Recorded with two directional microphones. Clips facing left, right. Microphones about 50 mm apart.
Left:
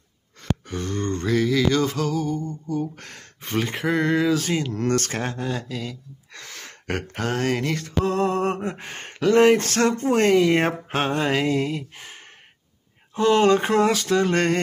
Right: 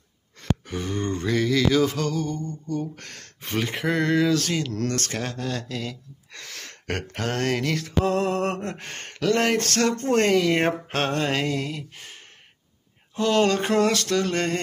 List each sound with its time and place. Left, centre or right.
0.4 s a sound: centre
1.2 s speech: centre
4.9 s speech: left; by 11.5 s centre
11.5 s speech: left
14.3 s speech: left